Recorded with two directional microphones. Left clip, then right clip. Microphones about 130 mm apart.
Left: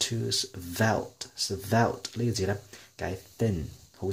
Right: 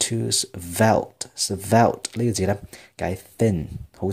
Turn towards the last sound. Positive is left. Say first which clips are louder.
# right 7 dB
turn(degrees=-40)  # may be behind; listen again after turning